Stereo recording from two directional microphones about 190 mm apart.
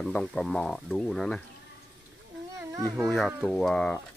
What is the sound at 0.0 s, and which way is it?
Speech, 5° left (ahead or behind).